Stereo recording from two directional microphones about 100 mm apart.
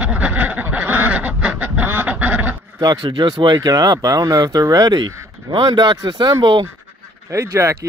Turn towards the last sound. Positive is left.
turn(degrees=-30)  # may be behind; listen again after turning